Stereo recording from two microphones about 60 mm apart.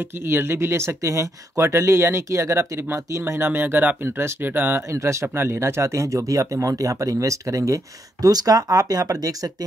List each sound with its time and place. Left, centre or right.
0.3 s speech: right
3.4 s speech: right
4.9 s speech: right